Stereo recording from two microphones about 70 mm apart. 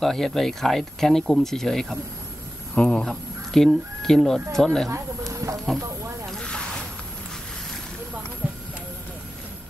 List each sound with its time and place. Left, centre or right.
0.0 s speech: centre
2.7 s speech: centre
3.1 s speech: centre
4.8 s a sound: right
6.3 s boat: centre